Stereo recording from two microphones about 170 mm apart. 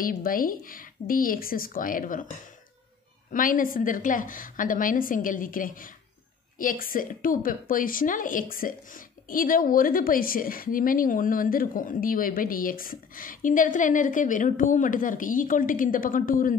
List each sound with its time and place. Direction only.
0.0 s a woman's voice: 55° left (ahead or behind)
3.3 s a woman's voice: 50° left (ahead or behind)